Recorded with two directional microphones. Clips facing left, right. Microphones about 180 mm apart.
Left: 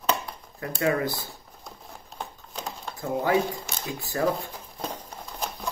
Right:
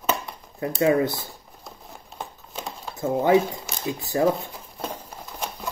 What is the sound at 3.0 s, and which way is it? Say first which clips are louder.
Speech: right 5 dB; 25° right (ahead or behind).